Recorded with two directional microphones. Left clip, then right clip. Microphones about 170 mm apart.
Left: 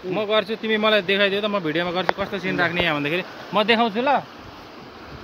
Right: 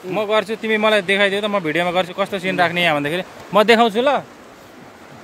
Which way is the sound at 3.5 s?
55° right (ahead or behind).